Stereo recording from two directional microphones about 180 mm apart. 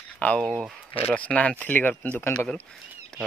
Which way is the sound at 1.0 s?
5° left (ahead or behind).